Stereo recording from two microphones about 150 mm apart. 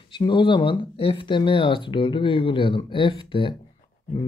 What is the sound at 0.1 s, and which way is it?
Speech, 30° left (ahead or behind).